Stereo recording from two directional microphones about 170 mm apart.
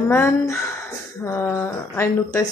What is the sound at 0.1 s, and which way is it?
Speech, 15° left (ahead or behind).